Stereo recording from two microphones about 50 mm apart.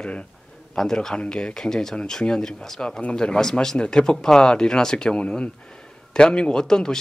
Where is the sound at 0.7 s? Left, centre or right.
Centre.